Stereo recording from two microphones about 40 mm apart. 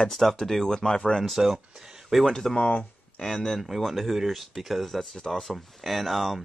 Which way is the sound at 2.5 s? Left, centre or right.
Left.